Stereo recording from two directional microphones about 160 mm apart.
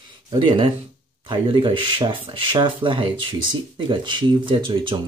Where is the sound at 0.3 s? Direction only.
30° right (ahead or behind).